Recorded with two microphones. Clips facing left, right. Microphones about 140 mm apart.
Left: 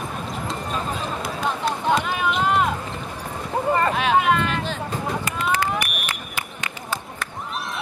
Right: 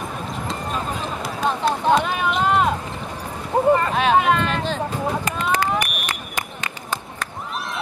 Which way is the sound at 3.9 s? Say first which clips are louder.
Right 2 dB; 40° right (ahead or behind).